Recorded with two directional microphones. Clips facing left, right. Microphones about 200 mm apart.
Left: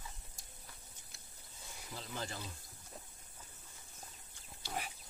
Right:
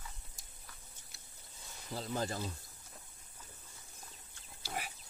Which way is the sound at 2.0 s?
40° right (ahead or behind).